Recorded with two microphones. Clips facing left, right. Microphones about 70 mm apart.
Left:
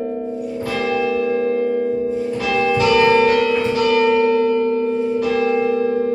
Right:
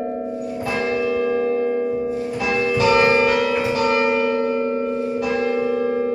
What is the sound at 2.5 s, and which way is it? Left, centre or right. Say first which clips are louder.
Church bell: left 1 dB; right.